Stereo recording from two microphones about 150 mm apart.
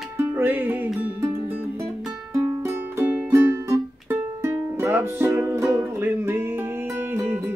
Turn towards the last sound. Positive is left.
turn(degrees=-15)  # may be behind; listen again after turning